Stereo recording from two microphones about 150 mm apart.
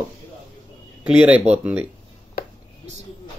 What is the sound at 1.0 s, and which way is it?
Speech, 5° right (ahead or behind).